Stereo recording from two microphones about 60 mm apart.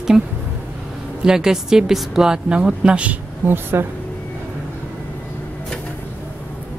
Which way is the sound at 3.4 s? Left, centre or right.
Right.